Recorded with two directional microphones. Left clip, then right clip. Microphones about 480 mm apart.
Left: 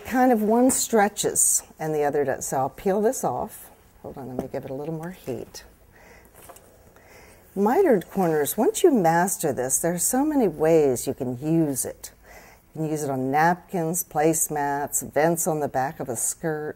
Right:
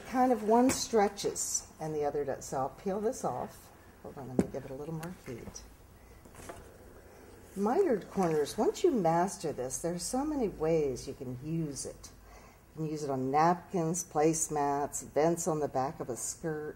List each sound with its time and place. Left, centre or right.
0.1 s a woman's voice: left
1.3 s a woman's voice: left
4.6 s a woman's voice: left
7.5 s a woman's voice: left
12.8 s a woman's voice: left